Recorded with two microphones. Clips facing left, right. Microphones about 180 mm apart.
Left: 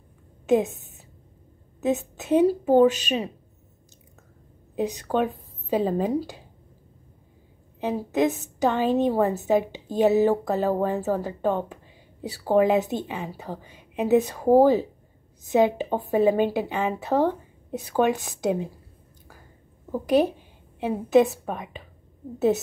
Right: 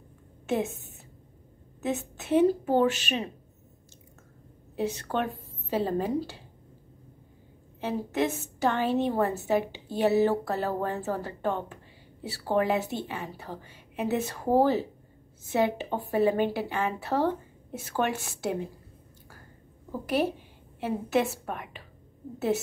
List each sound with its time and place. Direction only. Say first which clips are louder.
0.5 s a woman's voice: left 7 dB; 15° left (ahead or behind)
4.7 s a woman's voice: left 5 dB; 15° left (ahead or behind)
7.8 s a woman's voice: left 5 dB; 15° left (ahead or behind)
19.9 s a woman's voice: left 6 dB; 15° left (ahead or behind)